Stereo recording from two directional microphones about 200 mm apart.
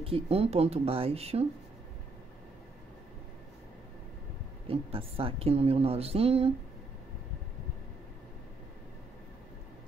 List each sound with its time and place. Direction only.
0.0 s a woman's voice: 30° right (ahead or behind)
4.6 s a woman's voice: 30° right (ahead or behind)